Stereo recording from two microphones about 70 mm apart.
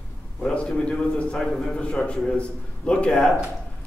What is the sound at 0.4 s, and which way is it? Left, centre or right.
A man's voice, centre.